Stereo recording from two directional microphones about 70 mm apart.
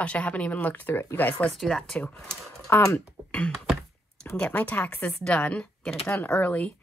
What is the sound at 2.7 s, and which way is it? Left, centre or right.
Speech, left.